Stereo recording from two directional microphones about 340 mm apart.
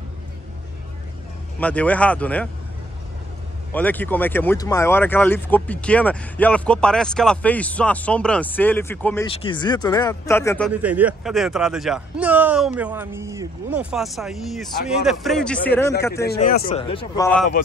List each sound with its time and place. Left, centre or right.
1.6 s speech: centre
3.7 s speech: centre
10.7 s speech: centre
16.3 s speech: left; by 17.5 s centre